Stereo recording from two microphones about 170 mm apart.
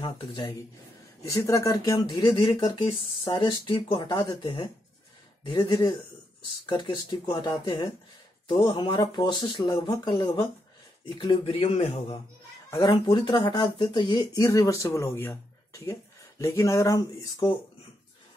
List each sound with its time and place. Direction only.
0.0 s speech: 25° left (ahead or behind)